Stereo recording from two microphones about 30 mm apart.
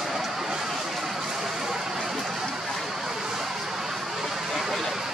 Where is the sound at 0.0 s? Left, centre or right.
Centre.